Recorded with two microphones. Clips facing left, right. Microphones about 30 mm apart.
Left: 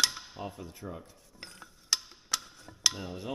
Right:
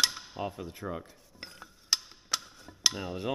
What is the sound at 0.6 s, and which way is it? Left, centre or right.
Speech, right.